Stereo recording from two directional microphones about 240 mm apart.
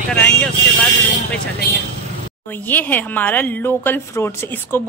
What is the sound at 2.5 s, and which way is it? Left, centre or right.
A woman's voice, centre.